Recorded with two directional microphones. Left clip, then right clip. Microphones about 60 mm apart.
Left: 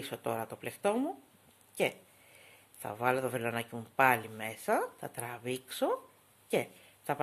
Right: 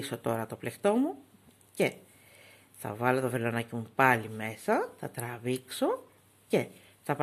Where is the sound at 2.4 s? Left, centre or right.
Right.